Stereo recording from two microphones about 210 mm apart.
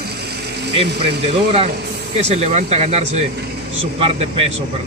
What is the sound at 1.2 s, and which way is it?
A man's voice, 30° right (ahead or behind).